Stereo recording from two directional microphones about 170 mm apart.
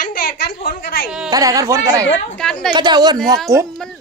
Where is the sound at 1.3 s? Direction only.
20° right (ahead or behind).